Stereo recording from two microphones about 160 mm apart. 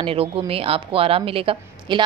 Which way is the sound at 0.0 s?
35° right (ahead or behind).